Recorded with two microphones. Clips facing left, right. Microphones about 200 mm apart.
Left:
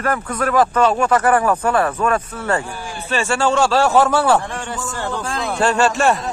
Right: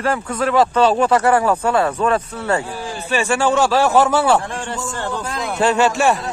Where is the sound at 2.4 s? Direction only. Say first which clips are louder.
Right 1 dB; 15° right (ahead or behind).